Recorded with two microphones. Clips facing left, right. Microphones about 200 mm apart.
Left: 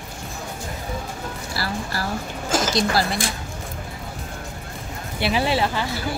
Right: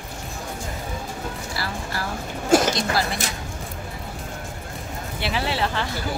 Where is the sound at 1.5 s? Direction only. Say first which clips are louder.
Left 5 dB; 35° left (ahead or behind).